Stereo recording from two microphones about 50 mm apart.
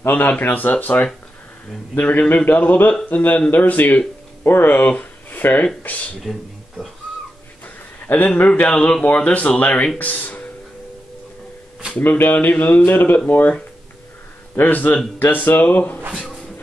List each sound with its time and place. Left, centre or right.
0.1 s speech: left
6.3 s speech: centre
8.4 s speech: left
12.0 s speech: left
14.6 s speech: left